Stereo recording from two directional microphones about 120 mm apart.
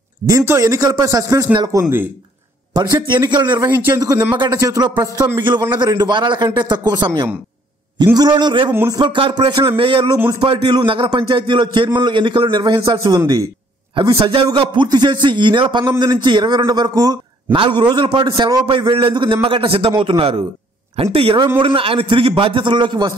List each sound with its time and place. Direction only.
0.3 s speech: 25° right (ahead or behind)
2.7 s a man's voice: 35° right (ahead or behind)
3.5 s speech: 20° right (ahead or behind)
3.9 s a man's voice: 35° right (ahead or behind)
14.2 s a man's voice: 45° right (ahead or behind)